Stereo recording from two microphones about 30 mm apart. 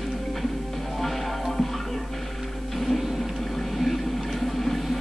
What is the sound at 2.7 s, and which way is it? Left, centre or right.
Music, centre.